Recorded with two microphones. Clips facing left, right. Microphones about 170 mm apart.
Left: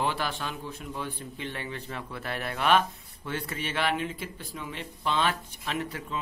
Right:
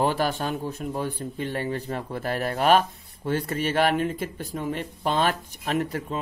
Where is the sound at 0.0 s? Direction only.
45° right (ahead or behind).